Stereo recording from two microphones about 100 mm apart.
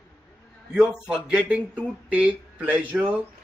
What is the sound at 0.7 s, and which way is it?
A man's voice, 10° right (ahead or behind).